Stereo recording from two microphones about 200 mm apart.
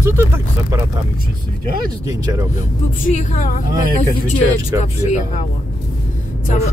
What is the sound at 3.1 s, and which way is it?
Speech, 40° left (ahead or behind).